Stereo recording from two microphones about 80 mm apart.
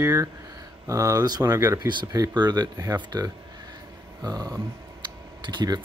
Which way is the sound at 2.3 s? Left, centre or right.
Right.